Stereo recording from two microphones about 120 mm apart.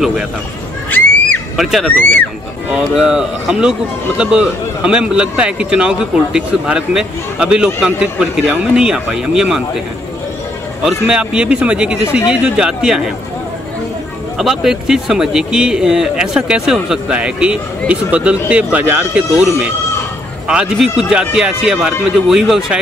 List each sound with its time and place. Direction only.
0.8 s neigh: 15° left (ahead or behind)
1.6 s speech: centre (ahead or behind)
1.9 s speech: 15° left (ahead or behind)
2.7 s speech: 5° right (ahead or behind)
10.8 s speech: 5° right (ahead or behind)
14.4 s speech: 5° right (ahead or behind)